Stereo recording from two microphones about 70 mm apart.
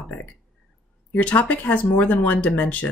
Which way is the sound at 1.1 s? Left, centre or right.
Left.